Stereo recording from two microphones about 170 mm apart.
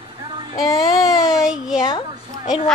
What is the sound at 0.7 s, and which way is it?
Speech, 25° left (ahead or behind).